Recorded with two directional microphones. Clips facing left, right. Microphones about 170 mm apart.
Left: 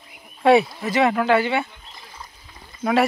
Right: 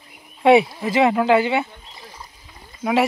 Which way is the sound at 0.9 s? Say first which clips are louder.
Right 2 dB; 20° right (ahead or behind).